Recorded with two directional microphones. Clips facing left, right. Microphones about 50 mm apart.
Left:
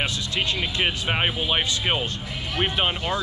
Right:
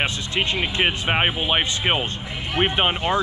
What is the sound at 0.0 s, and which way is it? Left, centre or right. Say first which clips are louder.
Speech: right 2 dB; right.